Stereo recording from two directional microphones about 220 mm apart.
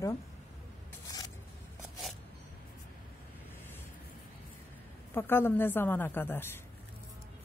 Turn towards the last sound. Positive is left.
turn(degrees=10)  # may be behind; listen again after turning